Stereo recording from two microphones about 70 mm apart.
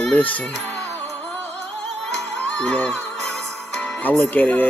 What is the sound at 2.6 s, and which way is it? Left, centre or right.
Music, centre.